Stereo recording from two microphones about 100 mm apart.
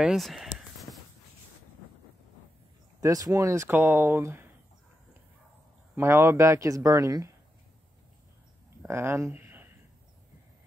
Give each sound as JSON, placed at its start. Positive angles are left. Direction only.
{"t": 0.0, "sound": "a sound", "side_deg": -5}
{"t": 3.0, "sound": "a man's voice", "side_deg": -35}
{"t": 5.9, "sound": "a man's voice", "side_deg": -25}
{"t": 8.8, "sound": "speech", "side_deg": -25}